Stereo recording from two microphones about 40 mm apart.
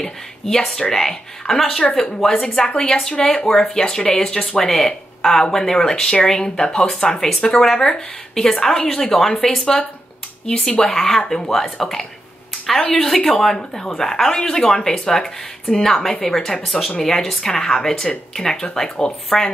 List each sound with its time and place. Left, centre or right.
0.0 s speech: centre
11.8 s a woman's voice: centre